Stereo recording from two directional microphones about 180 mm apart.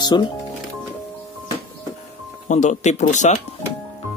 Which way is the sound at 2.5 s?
40° left (ahead or behind).